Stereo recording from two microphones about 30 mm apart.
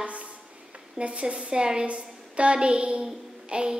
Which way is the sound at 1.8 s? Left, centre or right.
Right.